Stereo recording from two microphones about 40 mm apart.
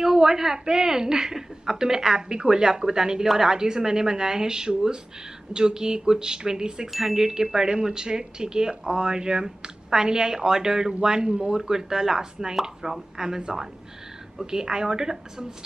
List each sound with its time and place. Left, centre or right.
0.0 s chime: centre
5.5 s speech: centre
6.9 s chime: centre